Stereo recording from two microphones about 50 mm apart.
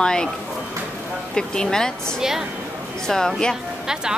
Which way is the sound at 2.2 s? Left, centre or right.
Centre.